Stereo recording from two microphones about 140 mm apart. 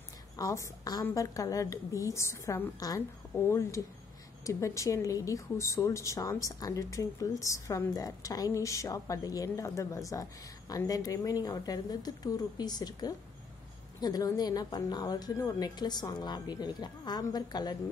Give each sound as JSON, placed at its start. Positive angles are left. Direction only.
{"t": 0.4, "sound": "speech", "side_deg": 25}